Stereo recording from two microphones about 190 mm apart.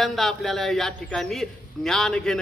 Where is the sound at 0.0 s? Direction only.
Centre (ahead or behind).